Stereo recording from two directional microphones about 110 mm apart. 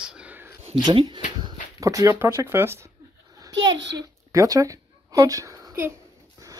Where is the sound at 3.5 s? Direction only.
35° right (ahead or behind).